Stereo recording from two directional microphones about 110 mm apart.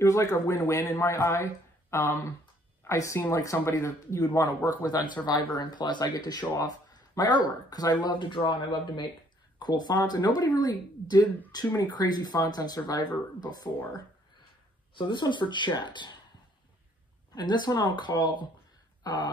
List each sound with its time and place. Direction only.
0.0 s speech: 30° left (ahead or behind)
4.6 s speech: 40° left (ahead or behind)
15.0 s speech: 45° left (ahead or behind)
17.4 s speech: 40° left (ahead or behind)